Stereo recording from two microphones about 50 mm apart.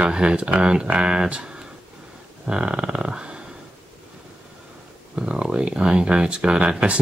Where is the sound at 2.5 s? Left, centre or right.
Centre.